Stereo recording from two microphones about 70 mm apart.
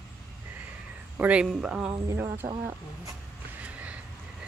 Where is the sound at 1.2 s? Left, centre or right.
Centre.